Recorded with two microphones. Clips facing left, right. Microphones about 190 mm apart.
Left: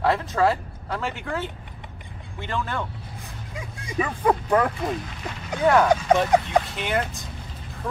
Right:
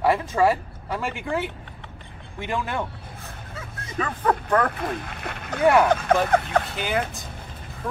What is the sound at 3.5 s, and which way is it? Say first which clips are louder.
Speech: left 3 dB; 15° left (ahead or behind).